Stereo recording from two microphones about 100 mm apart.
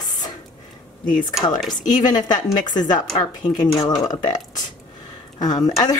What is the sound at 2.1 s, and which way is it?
Speech, 45° left (ahead or behind).